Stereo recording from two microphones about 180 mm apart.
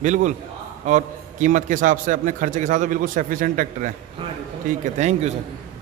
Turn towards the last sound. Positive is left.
turn(degrees=-40)  # may be behind; listen again after turning